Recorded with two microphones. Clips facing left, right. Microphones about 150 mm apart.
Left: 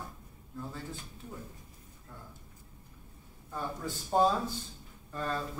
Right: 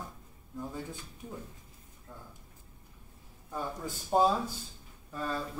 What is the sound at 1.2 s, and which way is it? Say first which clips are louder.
Speech: right 3 dB; 15° right (ahead or behind).